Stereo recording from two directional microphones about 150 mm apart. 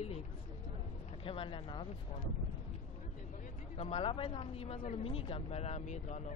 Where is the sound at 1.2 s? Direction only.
35° left (ahead or behind).